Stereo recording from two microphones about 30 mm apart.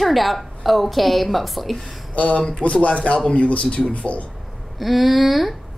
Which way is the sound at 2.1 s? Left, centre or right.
Left.